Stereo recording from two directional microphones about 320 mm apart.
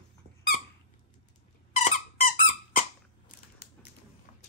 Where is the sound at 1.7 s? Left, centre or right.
Left.